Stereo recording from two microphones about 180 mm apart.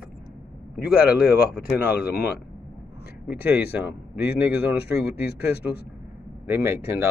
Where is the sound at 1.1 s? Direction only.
60° left (ahead or behind).